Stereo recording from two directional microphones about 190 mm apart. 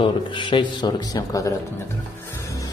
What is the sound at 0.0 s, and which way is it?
A man's voice, 25° left (ahead or behind).